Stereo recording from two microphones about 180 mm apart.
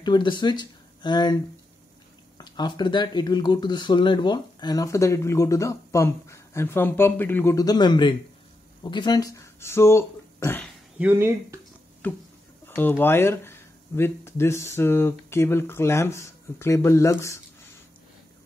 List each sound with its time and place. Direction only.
0.0 s speech: 25° left (ahead or behind)
11.0 s speech: 10° right (ahead or behind)
12.0 s a sound: 10° left (ahead or behind)
12.6 s speech: 10° left (ahead or behind)